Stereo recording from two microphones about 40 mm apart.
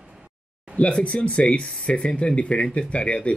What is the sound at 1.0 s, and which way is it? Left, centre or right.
Speech, left.